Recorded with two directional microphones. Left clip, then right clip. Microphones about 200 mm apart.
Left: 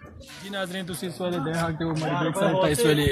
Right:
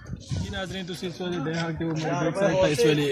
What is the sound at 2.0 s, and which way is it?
Speech, 40° left (ahead or behind).